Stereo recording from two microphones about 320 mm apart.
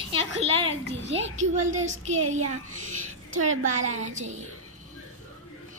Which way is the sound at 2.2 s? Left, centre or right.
Right.